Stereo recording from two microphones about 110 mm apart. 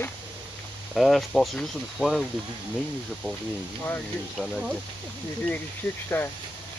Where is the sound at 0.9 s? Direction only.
Centre (ahead or behind).